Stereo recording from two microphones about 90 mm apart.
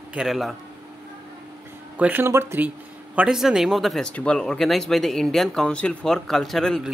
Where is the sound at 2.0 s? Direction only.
20° right (ahead or behind).